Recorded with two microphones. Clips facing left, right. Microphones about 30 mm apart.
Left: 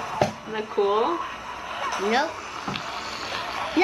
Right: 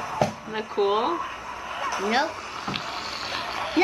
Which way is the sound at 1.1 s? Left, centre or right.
Centre.